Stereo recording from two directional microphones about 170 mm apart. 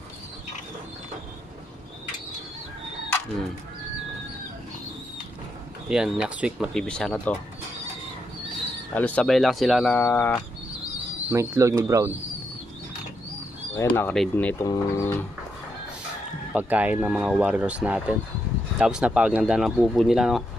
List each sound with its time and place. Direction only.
5.9 s speech: 5° right (ahead or behind)
8.9 s speech: 10° left (ahead or behind)
9.9 s speech: 10° left (ahead or behind)
11.2 s speech: 15° right (ahead or behind)
13.9 s speech: 5° left (ahead or behind)
16.5 s speech: 10° right (ahead or behind)